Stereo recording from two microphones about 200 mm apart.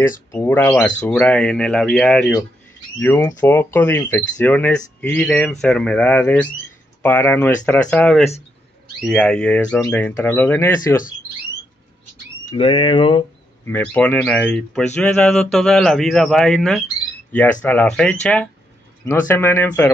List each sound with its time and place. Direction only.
0.3 s speech: 10° left (ahead or behind)
12.4 s speech: 30° left (ahead or behind)
13.7 s speech: 10° left (ahead or behind)